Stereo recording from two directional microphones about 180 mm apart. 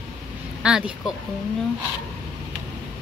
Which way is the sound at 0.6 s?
5° right (ahead or behind).